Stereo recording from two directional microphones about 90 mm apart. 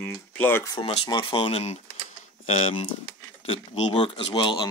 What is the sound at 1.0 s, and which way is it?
Speech, 70° left (ahead or behind).